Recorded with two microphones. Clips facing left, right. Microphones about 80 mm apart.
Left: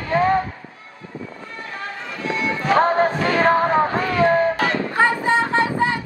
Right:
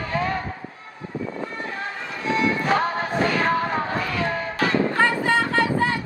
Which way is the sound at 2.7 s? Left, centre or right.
Left.